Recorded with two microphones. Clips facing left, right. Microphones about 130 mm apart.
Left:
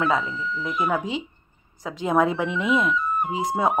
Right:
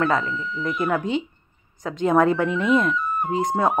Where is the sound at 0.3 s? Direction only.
50° right (ahead or behind).